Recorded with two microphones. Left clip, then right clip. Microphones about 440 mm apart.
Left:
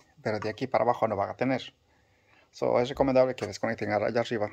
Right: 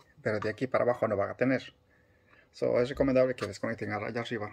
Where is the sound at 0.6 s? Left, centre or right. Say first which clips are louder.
Left 4 dB; left.